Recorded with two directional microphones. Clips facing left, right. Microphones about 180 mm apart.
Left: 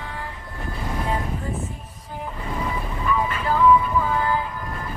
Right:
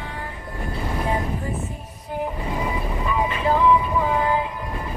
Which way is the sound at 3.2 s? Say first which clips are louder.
Right 1 dB; 20° right (ahead or behind).